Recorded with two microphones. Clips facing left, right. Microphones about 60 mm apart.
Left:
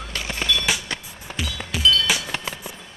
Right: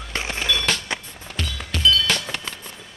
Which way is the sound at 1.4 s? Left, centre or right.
Centre.